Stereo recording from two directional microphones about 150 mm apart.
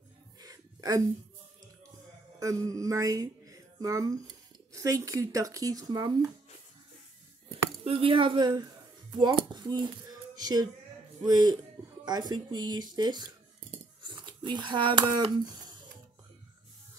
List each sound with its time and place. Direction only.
0.4 s a sound: 25° right (ahead or behind)
2.4 s speech: 20° right (ahead or behind)
7.5 s speech: 40° right (ahead or behind)